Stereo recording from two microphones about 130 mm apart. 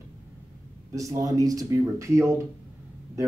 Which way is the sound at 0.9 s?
25° right (ahead or behind).